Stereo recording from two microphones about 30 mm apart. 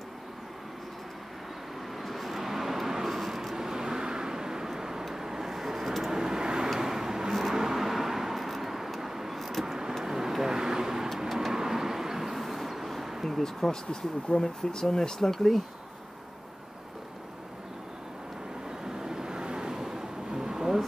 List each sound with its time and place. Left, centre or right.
2.0 s vehicle: centre
9.4 s vehicle: centre
10.0 s vehicle: centre
13.4 s speech: centre
18.9 s vehicle: right
19.7 s a sound: centre